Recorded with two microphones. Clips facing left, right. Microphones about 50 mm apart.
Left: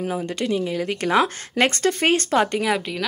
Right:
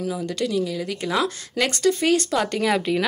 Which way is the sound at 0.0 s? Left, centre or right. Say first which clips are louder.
Even; left.